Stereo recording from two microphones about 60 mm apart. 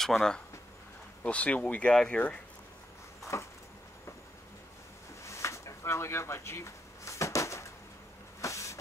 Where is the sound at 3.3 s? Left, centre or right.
Left.